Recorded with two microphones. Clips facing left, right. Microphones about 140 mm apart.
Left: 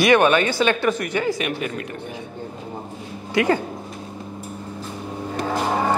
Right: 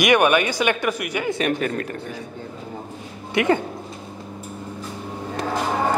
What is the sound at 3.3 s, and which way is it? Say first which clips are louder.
Speech: even; 25° right (ahead or behind).